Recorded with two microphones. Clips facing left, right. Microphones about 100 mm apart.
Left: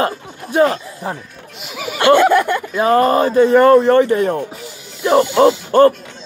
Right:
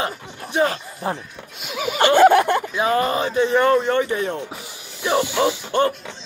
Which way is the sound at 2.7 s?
45° left (ahead or behind).